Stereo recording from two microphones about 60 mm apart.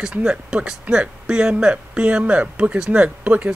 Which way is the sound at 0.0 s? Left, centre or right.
Centre.